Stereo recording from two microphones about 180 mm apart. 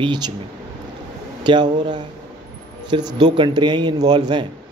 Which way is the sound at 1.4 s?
25° right (ahead or behind).